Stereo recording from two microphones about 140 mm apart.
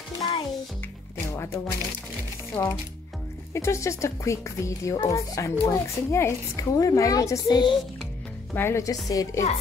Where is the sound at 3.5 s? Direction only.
20° left (ahead or behind).